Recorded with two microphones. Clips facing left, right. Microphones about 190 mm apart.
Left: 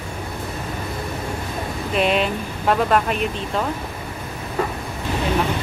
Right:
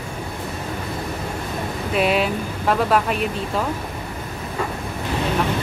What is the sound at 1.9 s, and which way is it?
Speech, 5° right (ahead or behind).